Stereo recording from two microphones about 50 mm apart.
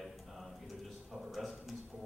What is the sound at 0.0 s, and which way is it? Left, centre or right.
Music, centre.